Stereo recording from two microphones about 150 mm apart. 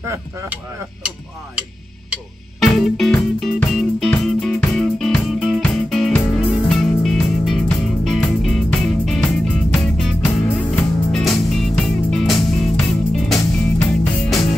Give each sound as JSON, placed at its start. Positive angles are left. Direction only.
{"t": 0.0, "sound": "speech", "side_deg": -20}
{"t": 2.6, "sound": "music", "side_deg": 0}
{"t": 10.2, "sound": "music", "side_deg": 15}
{"t": 10.8, "sound": "music", "side_deg": 5}